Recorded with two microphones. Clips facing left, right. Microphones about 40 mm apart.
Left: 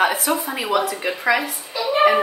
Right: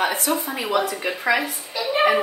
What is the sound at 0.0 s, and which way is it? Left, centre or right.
A woman's voice, centre.